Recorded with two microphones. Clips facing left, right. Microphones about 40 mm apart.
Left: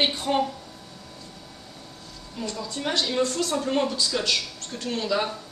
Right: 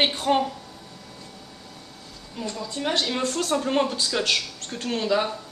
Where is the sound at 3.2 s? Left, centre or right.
Right.